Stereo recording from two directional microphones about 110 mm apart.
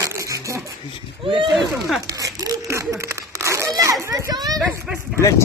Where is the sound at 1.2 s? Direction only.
55° right (ahead or behind).